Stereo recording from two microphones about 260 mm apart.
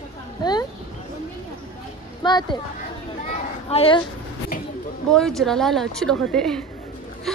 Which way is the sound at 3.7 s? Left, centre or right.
Left.